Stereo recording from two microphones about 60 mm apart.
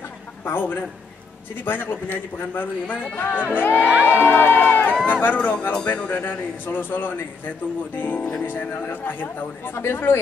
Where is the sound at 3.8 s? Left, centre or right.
Right.